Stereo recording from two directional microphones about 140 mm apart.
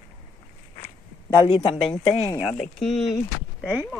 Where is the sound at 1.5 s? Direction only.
40° left (ahead or behind).